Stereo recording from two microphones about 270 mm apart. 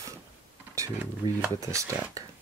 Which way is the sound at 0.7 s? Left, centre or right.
Centre.